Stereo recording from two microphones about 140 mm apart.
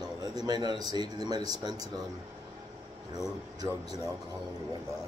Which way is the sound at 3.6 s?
25° right (ahead or behind).